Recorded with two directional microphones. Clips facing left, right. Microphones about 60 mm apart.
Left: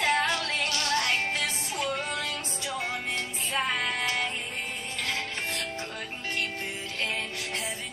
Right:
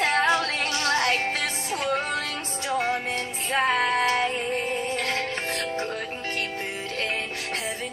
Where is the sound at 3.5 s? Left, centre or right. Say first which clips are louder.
Right 7 dB; right.